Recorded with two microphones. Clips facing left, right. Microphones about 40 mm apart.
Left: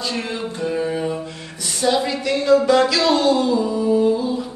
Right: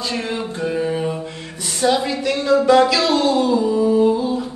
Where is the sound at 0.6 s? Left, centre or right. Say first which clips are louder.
Right 1 dB; centre.